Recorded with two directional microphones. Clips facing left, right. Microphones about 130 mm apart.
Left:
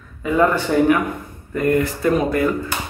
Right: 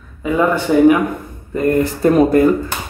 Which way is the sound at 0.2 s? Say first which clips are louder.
Right 1 dB; 15° right (ahead or behind).